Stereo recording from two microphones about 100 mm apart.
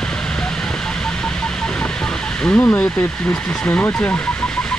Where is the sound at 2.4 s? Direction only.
10° left (ahead or behind).